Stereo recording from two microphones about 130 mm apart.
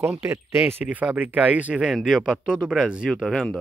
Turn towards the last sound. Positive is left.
turn(degrees=5)  # may be behind; listen again after turning